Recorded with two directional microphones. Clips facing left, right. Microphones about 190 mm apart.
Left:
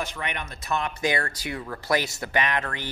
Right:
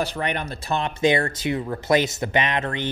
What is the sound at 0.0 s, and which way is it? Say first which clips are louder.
A man's voice: right 6 dB; 35° right (ahead or behind).